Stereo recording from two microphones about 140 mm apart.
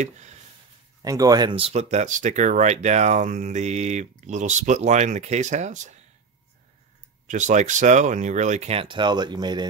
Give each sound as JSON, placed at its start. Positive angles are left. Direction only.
{"t": 0.0, "sound": "a sound", "side_deg": -55}
{"t": 1.0, "sound": "speech", "side_deg": -25}
{"t": 1.5, "sound": "speech", "side_deg": -45}
{"t": 7.2, "sound": "speech", "side_deg": -60}